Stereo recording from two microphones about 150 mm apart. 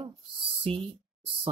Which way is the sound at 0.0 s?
35° right (ahead or behind).